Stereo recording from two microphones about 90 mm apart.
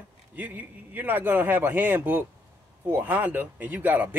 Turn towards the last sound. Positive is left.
turn(degrees=-20)  # may be behind; listen again after turning